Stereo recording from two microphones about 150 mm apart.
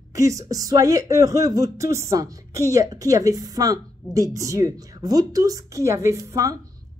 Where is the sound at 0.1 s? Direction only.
20° right (ahead or behind).